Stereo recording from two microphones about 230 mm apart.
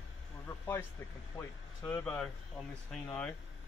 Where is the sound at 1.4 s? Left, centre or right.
Centre.